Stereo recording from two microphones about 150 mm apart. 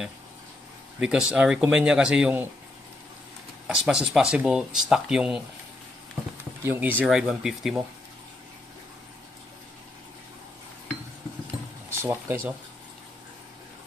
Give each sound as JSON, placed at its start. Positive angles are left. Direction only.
{"t": 0.9, "sound": "speech", "side_deg": -5}
{"t": 3.6, "sound": "speech", "side_deg": -5}
{"t": 6.6, "sound": "speech", "side_deg": -15}
{"t": 11.9, "sound": "speech", "side_deg": -15}